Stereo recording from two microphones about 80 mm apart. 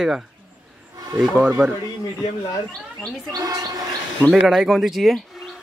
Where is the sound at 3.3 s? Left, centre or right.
Right.